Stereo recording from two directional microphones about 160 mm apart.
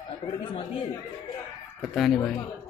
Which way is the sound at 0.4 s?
35° left (ahead or behind).